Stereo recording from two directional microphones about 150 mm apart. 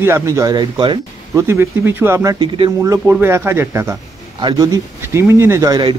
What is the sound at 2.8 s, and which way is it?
A man's voice, 20° right (ahead or behind).